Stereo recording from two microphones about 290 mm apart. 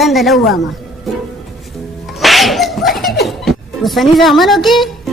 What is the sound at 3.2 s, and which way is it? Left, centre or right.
Speech, centre.